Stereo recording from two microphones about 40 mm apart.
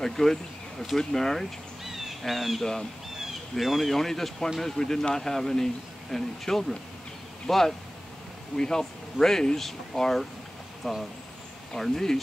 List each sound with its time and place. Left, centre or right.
0.0 s speech: centre
1.9 s bird: centre
2.6 s speech: centre
3.5 s speech: centre